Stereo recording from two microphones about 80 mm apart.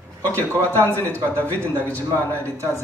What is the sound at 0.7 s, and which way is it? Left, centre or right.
Speech, left.